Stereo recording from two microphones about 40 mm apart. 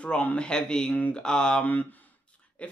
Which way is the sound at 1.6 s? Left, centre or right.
Left.